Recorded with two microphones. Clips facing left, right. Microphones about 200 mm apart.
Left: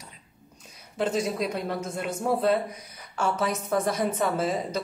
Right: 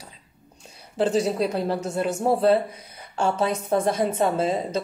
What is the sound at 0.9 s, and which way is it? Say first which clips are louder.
Speech: right 5 dB; 35° right (ahead or behind).